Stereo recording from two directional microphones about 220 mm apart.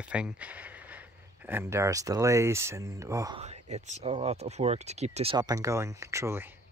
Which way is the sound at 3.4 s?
30° right (ahead or behind).